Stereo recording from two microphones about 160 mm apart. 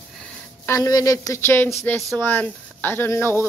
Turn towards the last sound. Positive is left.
turn(degrees=15)  # may be behind; listen again after turning